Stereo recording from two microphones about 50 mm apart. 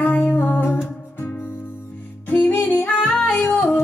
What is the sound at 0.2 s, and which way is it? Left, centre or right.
Music, left.